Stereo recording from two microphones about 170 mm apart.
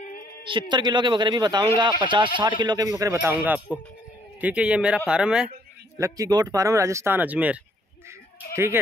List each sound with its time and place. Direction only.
0.5 s speech: 30° right (ahead or behind); by 5.5 s 5° right (ahead or behind)
5.9 s speech: 20° right (ahead or behind)